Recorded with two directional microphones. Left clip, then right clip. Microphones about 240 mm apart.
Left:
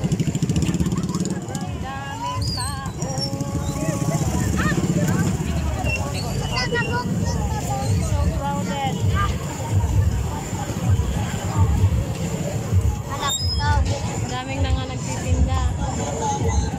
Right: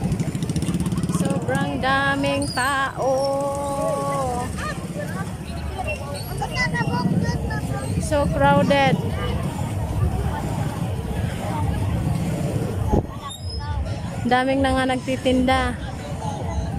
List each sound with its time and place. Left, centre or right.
1.9 s music: right
8.5 s speech: right
14.3 s speech: right